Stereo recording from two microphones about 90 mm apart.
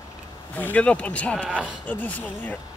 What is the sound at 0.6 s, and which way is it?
Speech, 20° left (ahead or behind).